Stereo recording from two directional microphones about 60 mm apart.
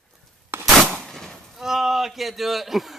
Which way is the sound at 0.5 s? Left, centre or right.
Right.